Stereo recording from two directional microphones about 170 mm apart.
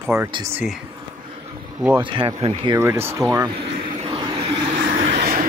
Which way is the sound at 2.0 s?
30° right (ahead or behind).